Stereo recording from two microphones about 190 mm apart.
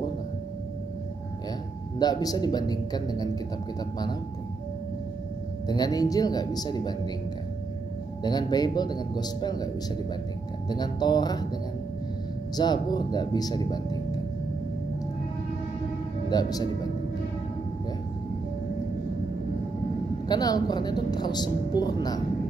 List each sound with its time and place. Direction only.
2.0 s a woman's voice: 20° left (ahead or behind)
5.7 s a woman's voice: 20° left (ahead or behind)
8.2 s a woman's voice: 20° left (ahead or behind)
10.7 s a woman's voice: 20° left (ahead or behind)
12.5 s a woman's voice: 20° left (ahead or behind)
16.3 s speech: 20° left (ahead or behind)
20.2 s a woman's voice: 20° left (ahead or behind)